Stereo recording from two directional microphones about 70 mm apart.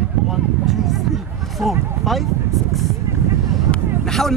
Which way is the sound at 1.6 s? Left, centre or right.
Right.